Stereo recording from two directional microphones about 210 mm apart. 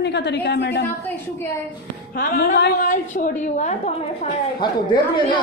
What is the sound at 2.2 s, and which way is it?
A woman's voice, 45° left (ahead or behind).